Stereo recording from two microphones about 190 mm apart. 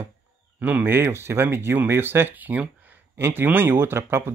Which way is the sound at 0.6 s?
10° right (ahead or behind).